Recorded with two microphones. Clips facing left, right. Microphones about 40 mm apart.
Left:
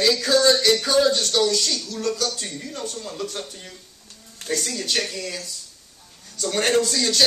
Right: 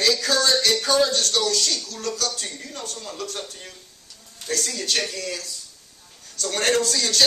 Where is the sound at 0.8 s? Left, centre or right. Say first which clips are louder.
Left 1 dB; centre.